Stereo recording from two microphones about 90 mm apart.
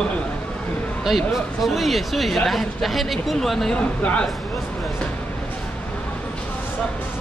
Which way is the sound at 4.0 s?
15° left (ahead or behind).